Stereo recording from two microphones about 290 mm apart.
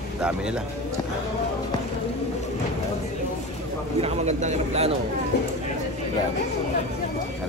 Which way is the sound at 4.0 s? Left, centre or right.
Right.